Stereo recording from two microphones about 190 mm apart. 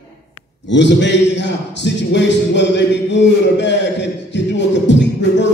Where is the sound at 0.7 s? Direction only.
70° left (ahead or behind).